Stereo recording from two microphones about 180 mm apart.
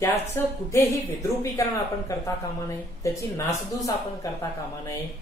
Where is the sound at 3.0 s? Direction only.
15° left (ahead or behind).